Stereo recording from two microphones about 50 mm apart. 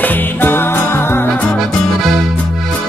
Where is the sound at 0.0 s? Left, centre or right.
Left.